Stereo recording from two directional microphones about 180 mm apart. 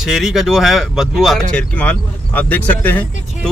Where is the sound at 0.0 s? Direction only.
5° right (ahead or behind).